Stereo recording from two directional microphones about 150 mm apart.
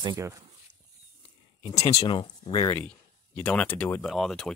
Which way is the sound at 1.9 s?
30° left (ahead or behind).